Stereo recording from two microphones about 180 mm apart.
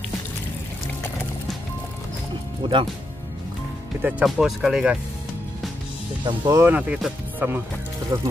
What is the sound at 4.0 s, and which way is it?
Speech, 5° right (ahead or behind).